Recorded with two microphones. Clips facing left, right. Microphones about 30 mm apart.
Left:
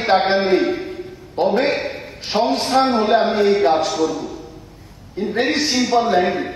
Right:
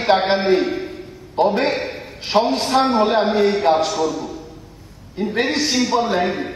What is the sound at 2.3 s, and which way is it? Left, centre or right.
Speech, right.